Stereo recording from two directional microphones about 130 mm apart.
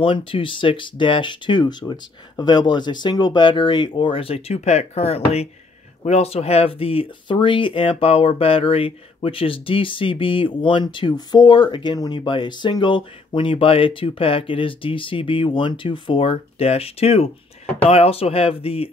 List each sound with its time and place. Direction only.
0.0 s speech: 45° left (ahead or behind)